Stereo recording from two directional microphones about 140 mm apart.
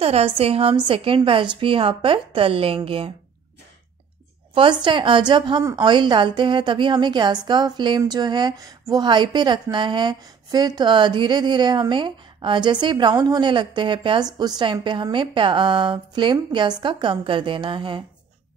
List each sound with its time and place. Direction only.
0.0 s a woman's voice: 45° right (ahead or behind)
4.6 s a woman's voice: 35° right (ahead or behind)